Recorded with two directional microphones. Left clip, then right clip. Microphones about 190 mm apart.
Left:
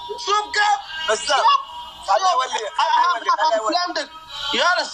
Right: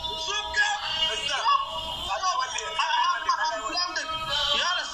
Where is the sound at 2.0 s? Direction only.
45° left (ahead or behind).